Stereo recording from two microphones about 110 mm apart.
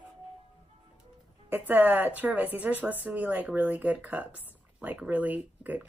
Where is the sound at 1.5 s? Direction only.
15° right (ahead or behind).